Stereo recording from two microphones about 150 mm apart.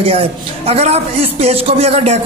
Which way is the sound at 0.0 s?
40° right (ahead or behind).